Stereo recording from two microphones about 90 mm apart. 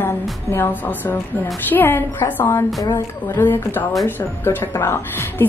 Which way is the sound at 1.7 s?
25° left (ahead or behind).